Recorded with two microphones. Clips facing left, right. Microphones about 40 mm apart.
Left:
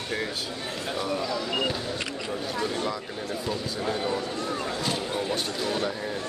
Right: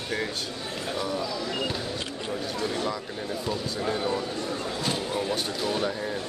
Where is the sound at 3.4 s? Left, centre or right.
Centre.